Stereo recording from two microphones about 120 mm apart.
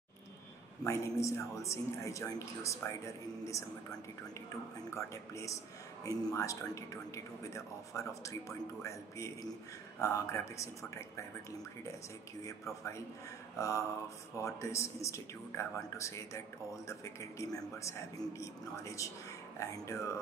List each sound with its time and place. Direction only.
0.8 s speech: 25° left (ahead or behind)
4.9 s speech: 25° left (ahead or behind)
12.4 s speech: 25° left (ahead or behind)